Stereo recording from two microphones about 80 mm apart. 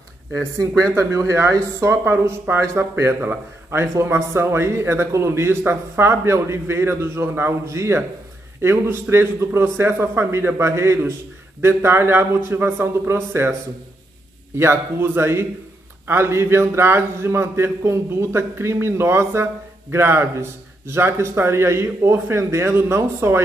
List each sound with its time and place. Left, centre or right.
0.9 s a man's voice: right